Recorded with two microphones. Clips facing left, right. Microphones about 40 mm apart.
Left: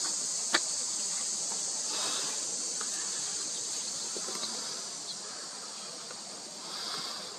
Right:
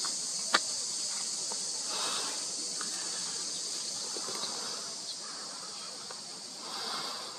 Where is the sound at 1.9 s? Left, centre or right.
Right.